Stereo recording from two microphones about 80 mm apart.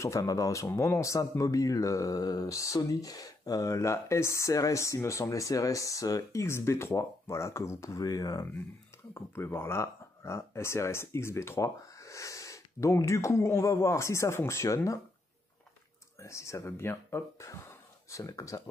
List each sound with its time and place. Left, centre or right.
0.0 s speech: left
9.1 s speech: left
16.2 s speech: left
17.5 s speech: left